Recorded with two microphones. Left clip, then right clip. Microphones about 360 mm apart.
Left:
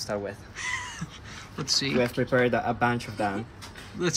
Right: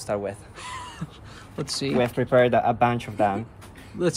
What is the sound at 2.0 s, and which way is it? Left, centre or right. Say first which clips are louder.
Speech: right 7 dB; right.